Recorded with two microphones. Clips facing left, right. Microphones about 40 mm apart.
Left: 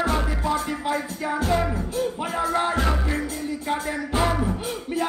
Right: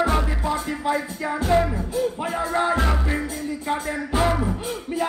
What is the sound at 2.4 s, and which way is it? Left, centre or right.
Music, left.